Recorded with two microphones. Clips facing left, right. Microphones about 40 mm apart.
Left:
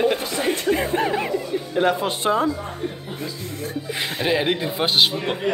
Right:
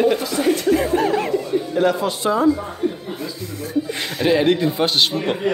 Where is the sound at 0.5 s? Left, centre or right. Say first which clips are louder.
Right 3 dB; left.